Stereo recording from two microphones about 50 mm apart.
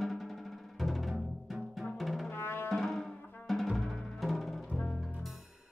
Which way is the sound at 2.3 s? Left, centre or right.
Left.